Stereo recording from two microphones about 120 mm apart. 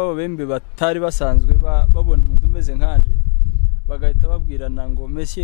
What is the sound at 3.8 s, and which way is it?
Speech, 15° left (ahead or behind).